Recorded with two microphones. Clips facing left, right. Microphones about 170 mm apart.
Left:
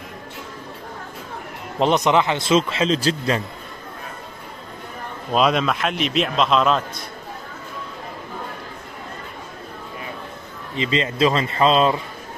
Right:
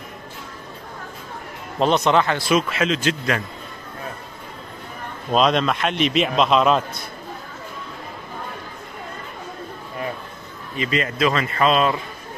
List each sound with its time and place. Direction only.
1.8 s speech: 15° left (ahead or behind); by 3.4 s 30° left (ahead or behind)
5.3 s a man's voice: 5° left (ahead or behind)
10.8 s speech: 25° left (ahead or behind)